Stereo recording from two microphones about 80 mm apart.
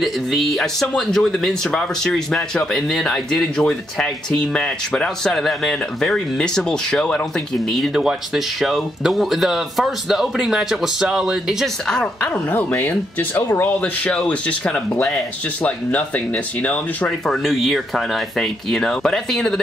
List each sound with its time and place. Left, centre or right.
0.0 s speech: centre
7.9 s speech: centre
11.9 s speech: centre
12.7 s speech: left
17.3 s speech: centre